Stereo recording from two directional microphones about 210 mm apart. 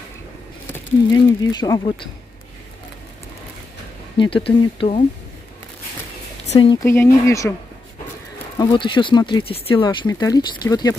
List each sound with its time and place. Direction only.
0.7 s speech: 15° left (ahead or behind)
4.2 s speech: 25° left (ahead or behind)
6.5 s speech: 25° left (ahead or behind)
6.8 s speech: 15° left (ahead or behind)
8.5 s speech: 25° left (ahead or behind)